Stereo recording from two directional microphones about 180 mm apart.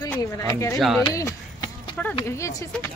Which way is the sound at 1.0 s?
20° left (ahead or behind).